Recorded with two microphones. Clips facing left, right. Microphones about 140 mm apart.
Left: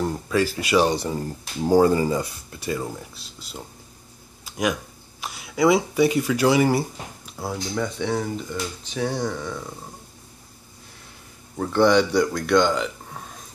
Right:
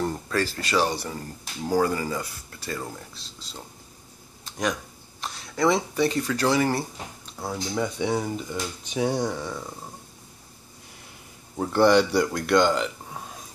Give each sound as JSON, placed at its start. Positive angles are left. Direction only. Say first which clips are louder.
{"t": 0.0, "sound": "speech", "louder": "left 4 dB", "side_deg": 10}
{"t": 4.5, "sound": "a sound", "louder": "left 3 dB", "side_deg": 10}
{"t": 5.2, "sound": "speech", "louder": "left 3 dB", "side_deg": 10}
{"t": 7.7, "sound": "speech", "louder": "even", "side_deg": -10}
{"t": 11.5, "sound": "a man's voice", "louder": "left 1 dB", "side_deg": -15}
{"t": 11.8, "sound": "speech", "louder": "left 1 dB", "side_deg": 0}